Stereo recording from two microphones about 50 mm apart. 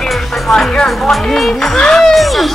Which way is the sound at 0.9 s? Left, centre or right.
Centre.